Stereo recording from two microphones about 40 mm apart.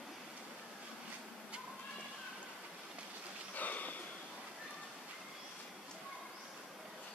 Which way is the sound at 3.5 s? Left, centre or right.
Left.